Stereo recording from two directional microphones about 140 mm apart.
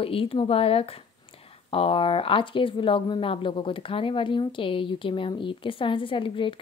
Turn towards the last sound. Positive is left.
turn(degrees=40)  # may be behind; listen again after turning